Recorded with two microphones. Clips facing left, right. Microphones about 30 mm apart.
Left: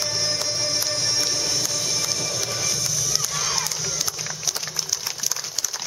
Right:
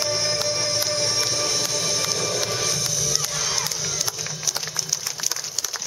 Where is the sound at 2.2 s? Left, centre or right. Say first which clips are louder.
Right 2 dB; centre.